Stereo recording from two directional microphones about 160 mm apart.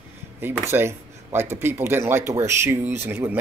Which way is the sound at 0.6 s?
15° right (ahead or behind).